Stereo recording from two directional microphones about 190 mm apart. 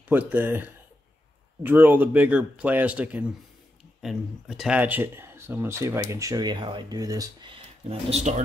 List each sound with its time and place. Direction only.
0.1 s speech: 10° right (ahead or behind); by 8.4 s 35° right (ahead or behind)